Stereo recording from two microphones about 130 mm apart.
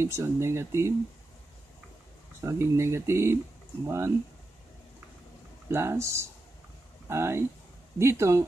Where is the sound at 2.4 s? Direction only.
20° right (ahead or behind).